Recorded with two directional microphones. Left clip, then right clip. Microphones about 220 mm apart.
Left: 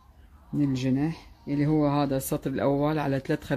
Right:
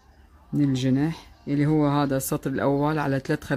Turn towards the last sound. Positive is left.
turn(degrees=-15)  # may be behind; listen again after turning